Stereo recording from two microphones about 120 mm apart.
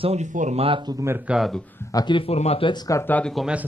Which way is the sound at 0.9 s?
25° right (ahead or behind).